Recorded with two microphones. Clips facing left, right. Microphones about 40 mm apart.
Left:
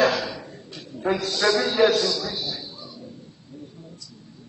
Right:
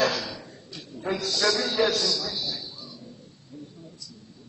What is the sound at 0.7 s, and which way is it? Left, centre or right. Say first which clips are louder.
A man's voice: left 5 dB; centre.